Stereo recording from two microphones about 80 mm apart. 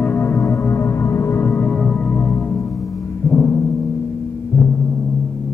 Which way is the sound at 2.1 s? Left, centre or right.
Centre.